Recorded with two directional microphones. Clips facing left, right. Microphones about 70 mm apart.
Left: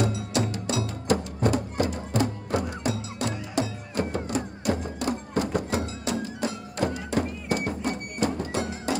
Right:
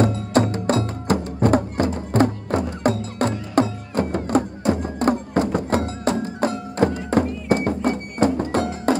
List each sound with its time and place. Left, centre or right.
0.0 s music: right